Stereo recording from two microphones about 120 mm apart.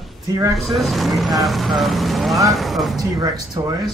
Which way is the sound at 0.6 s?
Centre (ahead or behind).